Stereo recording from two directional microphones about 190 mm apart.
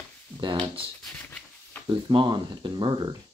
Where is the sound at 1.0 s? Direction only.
5° left (ahead or behind).